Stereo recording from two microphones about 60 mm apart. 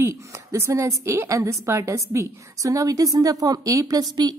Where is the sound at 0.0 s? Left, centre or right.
Right.